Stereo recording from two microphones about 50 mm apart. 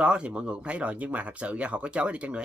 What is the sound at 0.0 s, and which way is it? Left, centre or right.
Speech, right.